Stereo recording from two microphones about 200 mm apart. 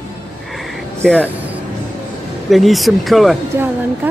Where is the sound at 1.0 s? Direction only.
5° left (ahead or behind).